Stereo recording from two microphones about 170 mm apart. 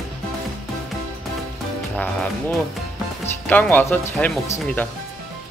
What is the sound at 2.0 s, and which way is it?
Speech, 10° left (ahead or behind).